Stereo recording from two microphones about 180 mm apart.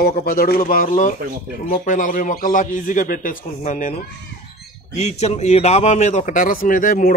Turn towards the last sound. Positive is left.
turn(degrees=50)  # may be behind; listen again after turning